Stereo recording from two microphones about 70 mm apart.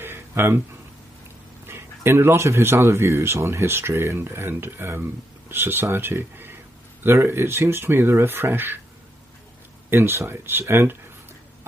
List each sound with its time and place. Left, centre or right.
0.0 s a sound: right
1.7 s speech: right
9.8 s speech: right